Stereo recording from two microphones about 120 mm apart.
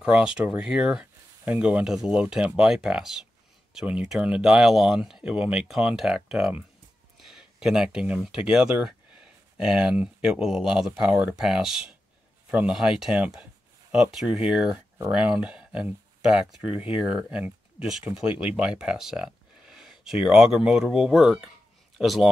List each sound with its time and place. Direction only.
0.0 s speech: 5° right (ahead or behind)